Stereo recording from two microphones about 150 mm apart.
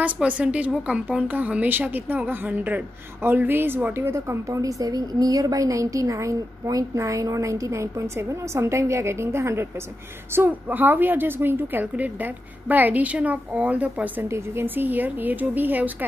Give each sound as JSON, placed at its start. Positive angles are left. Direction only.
{"t": 0.0, "sound": "a woman's voice", "side_deg": -10}